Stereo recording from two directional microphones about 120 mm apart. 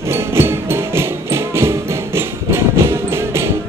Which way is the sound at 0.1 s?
20° right (ahead or behind).